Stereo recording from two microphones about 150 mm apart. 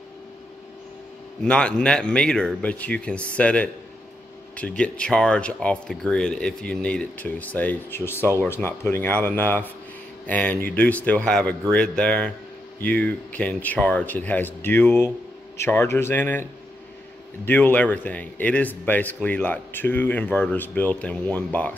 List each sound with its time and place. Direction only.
1.4 s speech: 5° left (ahead or behind)
17.5 s speech: 10° left (ahead or behind)